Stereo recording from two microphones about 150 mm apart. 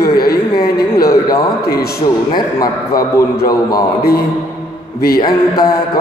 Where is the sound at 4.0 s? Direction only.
90° left.